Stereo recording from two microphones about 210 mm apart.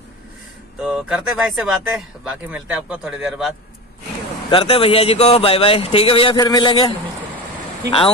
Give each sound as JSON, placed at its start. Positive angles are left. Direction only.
{"t": 0.8, "sound": "speech", "side_deg": -5}
{"t": 4.5, "sound": "speech", "side_deg": 25}